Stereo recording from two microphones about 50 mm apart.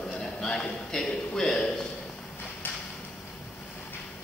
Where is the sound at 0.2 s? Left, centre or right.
Centre.